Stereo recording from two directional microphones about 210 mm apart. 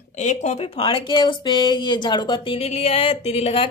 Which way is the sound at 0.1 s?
35° left (ahead or behind).